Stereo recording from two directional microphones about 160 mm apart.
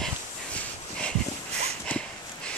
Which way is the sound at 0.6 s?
5° left (ahead or behind).